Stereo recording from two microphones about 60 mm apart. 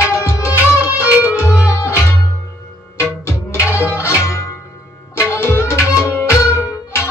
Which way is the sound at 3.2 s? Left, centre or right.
Left.